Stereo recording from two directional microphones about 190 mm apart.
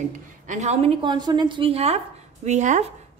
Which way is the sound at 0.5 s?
35° right (ahead or behind).